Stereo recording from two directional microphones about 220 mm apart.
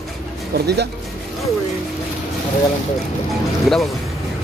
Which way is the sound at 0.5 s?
50° right (ahead or behind).